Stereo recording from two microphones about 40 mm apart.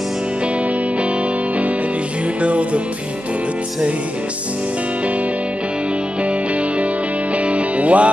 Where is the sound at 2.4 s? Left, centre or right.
Right.